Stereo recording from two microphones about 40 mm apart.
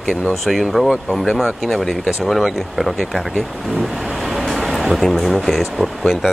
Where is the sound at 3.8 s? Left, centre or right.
Centre.